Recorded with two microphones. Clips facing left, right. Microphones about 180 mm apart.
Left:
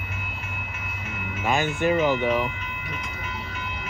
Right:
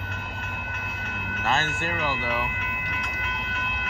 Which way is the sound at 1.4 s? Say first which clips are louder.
Left 4 dB; 15° left (ahead or behind).